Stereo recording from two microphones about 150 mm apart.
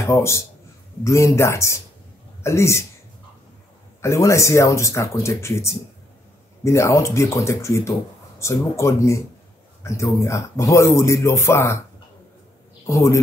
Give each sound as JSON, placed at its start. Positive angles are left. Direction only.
{"t": 0.0, "sound": "speech", "side_deg": 20}
{"t": 4.0, "sound": "speech", "side_deg": 20}
{"t": 10.2, "sound": "speech", "side_deg": 20}
{"t": 12.8, "sound": "speech", "side_deg": 20}